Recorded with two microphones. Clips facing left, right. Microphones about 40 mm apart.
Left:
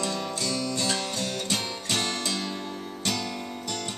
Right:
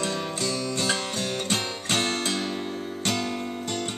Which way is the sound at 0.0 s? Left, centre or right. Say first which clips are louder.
Right 2 dB; right.